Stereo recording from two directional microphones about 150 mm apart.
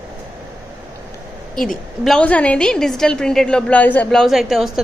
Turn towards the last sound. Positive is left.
turn(degrees=0)  # may be behind; listen again after turning